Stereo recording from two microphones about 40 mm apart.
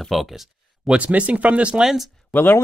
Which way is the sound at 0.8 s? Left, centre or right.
Right.